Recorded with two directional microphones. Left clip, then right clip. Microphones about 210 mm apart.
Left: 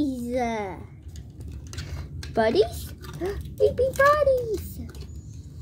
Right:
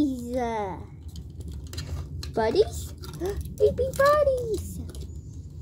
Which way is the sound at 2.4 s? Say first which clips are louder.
Left 2 dB; 20° left (ahead or behind).